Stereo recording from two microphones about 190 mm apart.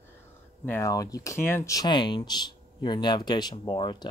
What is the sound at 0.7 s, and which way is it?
Speech, 15° left (ahead or behind).